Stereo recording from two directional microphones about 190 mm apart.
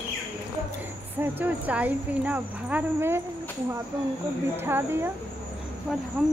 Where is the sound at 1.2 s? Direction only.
10° right (ahead or behind).